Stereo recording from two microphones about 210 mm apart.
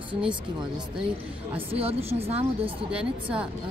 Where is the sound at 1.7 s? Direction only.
30° right (ahead or behind).